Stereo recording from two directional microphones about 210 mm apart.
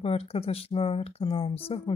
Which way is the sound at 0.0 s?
30° left (ahead or behind).